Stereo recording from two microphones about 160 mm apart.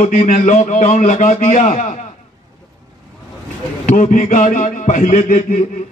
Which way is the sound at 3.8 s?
50° left (ahead or behind).